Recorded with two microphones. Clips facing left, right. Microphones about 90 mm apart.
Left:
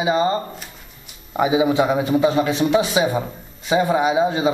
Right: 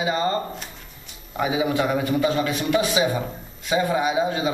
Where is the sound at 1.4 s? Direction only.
20° left (ahead or behind).